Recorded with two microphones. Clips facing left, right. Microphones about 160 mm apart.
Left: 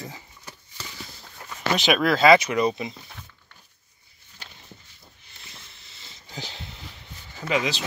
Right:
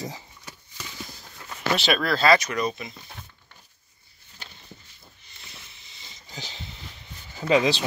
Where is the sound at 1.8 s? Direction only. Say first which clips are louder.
Left 5 dB; 10° left (ahead or behind).